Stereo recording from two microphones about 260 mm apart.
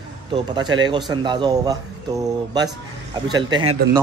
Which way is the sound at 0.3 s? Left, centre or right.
Centre.